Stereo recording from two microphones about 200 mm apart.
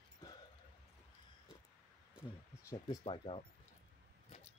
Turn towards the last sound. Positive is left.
turn(degrees=25)  # may be behind; listen again after turning